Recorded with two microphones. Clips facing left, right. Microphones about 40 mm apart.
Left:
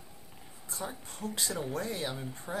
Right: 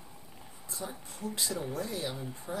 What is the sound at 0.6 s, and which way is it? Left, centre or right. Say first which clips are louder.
Speech: left 1 dB; left.